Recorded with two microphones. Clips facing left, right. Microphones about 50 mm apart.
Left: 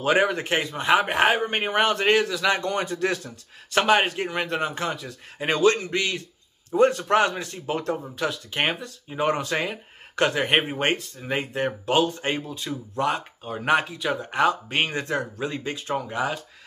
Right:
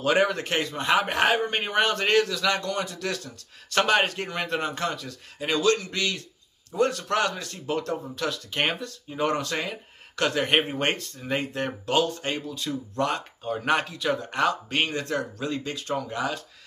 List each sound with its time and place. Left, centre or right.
0.0 s speech: centre
3.7 s speech: centre
5.4 s speech: left
10.4 s speech: centre